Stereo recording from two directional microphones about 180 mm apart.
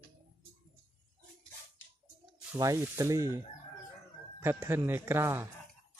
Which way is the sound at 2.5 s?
15° right (ahead or behind).